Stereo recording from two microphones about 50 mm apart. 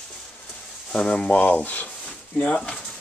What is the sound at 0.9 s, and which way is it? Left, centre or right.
Speech, left.